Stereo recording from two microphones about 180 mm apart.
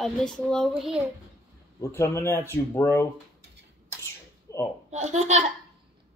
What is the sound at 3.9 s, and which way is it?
Sneeze, 15° left (ahead or behind).